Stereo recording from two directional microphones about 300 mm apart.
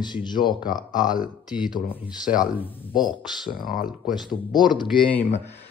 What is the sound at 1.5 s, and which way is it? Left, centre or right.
Speech, centre.